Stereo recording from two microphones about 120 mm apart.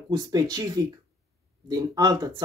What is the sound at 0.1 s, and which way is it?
Speech, 35° right (ahead or behind).